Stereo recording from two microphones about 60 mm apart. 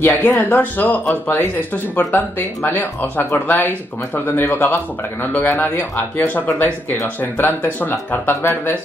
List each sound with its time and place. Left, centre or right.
0.0 s speech: left